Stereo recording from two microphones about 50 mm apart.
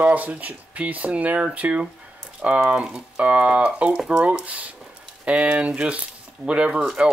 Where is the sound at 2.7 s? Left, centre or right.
Right.